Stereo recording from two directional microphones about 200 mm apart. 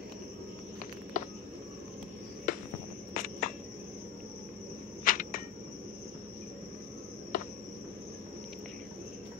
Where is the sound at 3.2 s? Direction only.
40° left (ahead or behind).